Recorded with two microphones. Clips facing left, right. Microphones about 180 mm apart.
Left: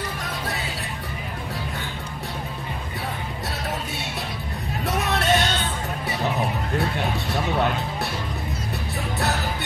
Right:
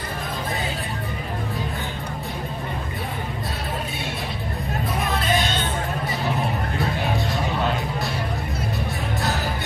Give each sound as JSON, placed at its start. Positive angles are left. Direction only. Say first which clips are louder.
{"t": 4.8, "sound": "vehicle", "louder": "left 3 dB", "side_deg": 75}